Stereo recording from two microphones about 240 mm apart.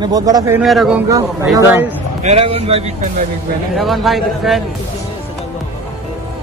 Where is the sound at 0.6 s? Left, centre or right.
Centre.